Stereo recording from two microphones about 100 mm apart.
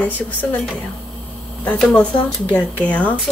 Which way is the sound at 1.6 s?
10° left (ahead or behind).